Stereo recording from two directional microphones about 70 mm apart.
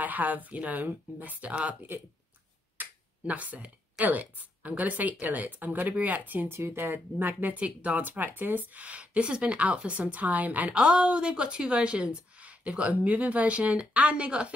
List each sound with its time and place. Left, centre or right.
0.0 s speech: right
2.8 s finger snapping: right
4.0 s speech: right